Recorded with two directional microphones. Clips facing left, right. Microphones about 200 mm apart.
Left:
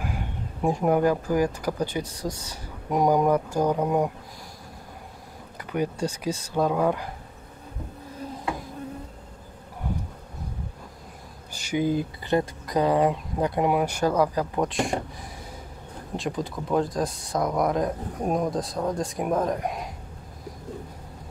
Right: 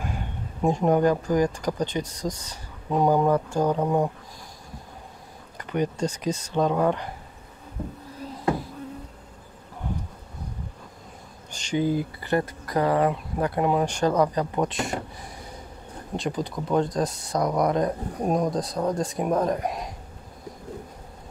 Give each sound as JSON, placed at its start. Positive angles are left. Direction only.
{"t": 0.0, "sound": "speech", "side_deg": 5}
{"t": 2.1, "sound": "speech", "side_deg": -15}
{"t": 2.9, "sound": "speech", "side_deg": 15}
{"t": 5.6, "sound": "speech", "side_deg": 10}
{"t": 11.7, "sound": "speech", "side_deg": 15}
{"t": 16.2, "sound": "speech", "side_deg": 0}